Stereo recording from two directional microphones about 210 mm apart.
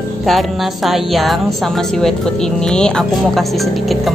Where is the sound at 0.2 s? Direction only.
Centre (ahead or behind).